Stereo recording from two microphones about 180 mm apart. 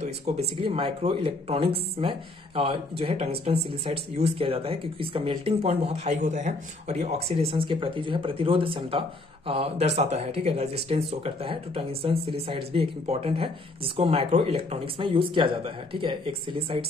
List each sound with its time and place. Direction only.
0.6 s speech: 30° right (ahead or behind)